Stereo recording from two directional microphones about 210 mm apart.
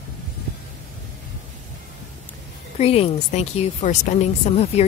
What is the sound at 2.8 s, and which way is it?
Speech, 30° left (ahead or behind).